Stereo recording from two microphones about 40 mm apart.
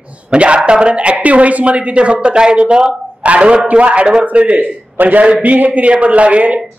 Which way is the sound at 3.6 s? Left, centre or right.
Right.